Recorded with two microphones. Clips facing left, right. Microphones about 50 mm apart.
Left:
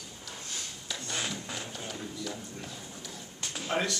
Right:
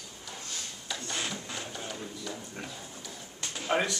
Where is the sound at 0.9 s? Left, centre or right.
Centre.